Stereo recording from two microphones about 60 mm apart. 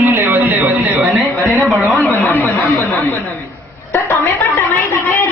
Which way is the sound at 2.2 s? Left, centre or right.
Left.